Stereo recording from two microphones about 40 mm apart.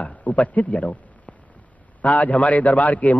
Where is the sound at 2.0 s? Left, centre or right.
Left.